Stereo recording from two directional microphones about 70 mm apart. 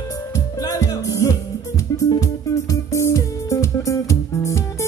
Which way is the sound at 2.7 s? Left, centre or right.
Left.